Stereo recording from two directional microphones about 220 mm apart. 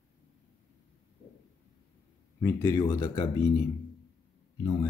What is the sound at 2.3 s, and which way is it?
Speech, 10° left (ahead or behind).